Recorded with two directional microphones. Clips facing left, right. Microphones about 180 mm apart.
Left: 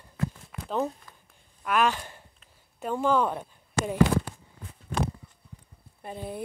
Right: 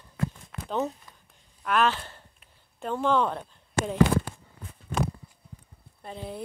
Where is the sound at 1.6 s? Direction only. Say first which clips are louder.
Even; 10° left (ahead or behind).